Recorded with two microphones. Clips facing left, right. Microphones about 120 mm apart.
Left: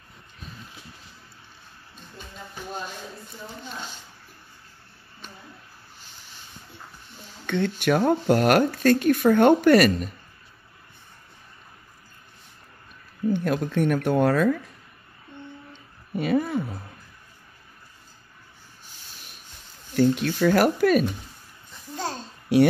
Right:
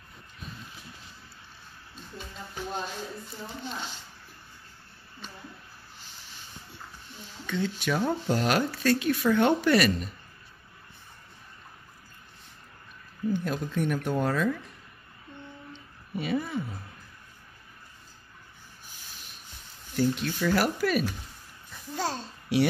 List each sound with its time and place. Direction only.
7.4 s speech: 60° left (ahead or behind)
13.3 s speech: 65° left (ahead or behind)
15.7 s a sound: 50° left (ahead or behind)
20.0 s speech: 60° left (ahead or behind)
21.9 s babbling: 5° right (ahead or behind)
22.5 s speech: 50° left (ahead or behind)